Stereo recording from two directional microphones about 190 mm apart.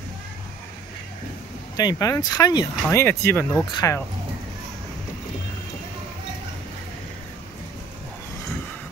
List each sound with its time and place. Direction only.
1.8 s speech: 20° left (ahead or behind)